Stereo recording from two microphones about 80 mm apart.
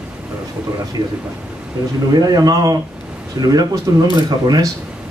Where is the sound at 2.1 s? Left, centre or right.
Right.